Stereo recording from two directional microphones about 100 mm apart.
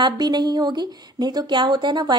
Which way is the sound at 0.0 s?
45° right (ahead or behind).